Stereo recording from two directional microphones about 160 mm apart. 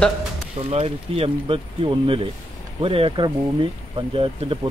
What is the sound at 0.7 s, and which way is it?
Speech, 40° right (ahead or behind).